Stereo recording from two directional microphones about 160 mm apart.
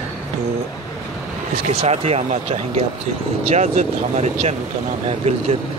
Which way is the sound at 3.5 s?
45° right (ahead or behind).